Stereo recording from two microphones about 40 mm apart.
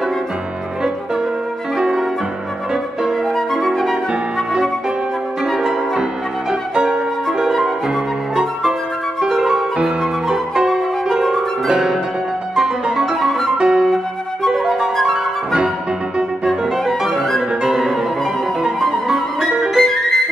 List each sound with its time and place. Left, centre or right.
1.8 s piano: centre
3.3 s music: centre
5.6 s music: centre
9.3 s music: centre
9.8 s music: centre
11.7 s piano: centre
12.5 s music: centre
13.2 s music: centre
13.6 s music: centre
13.8 s music: centre
14.5 s flute: centre
16.4 s music: centre
19.5 s music: centre
19.8 s music: centre